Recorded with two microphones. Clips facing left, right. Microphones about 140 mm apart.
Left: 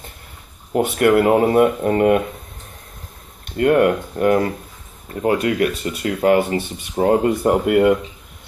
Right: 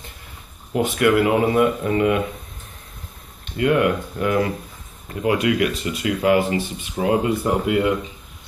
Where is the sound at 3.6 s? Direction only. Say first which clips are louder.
Left 4 dB; 50° left (ahead or behind).